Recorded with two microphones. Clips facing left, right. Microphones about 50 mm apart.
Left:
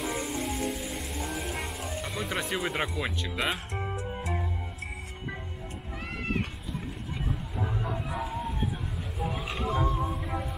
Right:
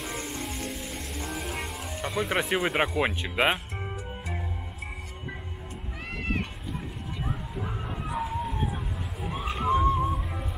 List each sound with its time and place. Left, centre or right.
0.0 s music: centre
2.4 s speech: centre
3.7 s music: centre
7.7 s bow-wow: centre
8.1 s dog: centre
9.2 s a sound: centre
9.5 s music: centre
9.9 s music: centre